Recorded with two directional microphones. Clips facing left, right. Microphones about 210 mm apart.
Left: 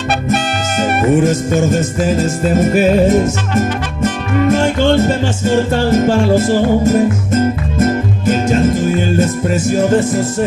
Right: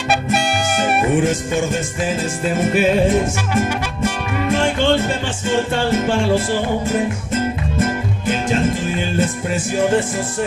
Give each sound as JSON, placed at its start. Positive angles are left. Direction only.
{"t": 1.2, "sound": "music", "side_deg": 40}
{"t": 4.5, "sound": "music", "side_deg": 40}